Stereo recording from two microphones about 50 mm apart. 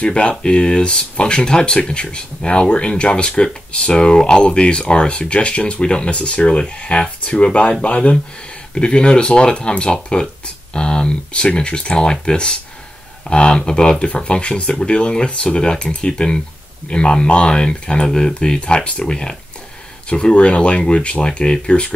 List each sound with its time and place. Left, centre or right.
0.0 s speech: left